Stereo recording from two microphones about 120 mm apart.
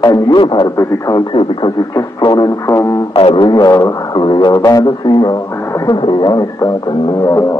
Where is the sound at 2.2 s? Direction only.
35° left (ahead or behind).